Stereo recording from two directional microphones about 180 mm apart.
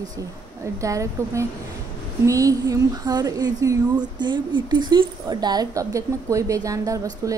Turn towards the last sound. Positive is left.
turn(degrees=-15)  # may be behind; listen again after turning